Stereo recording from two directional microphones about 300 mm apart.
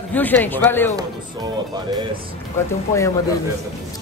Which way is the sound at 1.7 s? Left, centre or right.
Centre.